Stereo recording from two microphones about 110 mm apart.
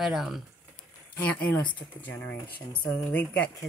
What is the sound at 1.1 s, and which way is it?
Speech, 15° left (ahead or behind).